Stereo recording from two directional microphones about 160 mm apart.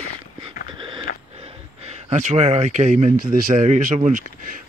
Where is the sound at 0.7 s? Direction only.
30° right (ahead or behind).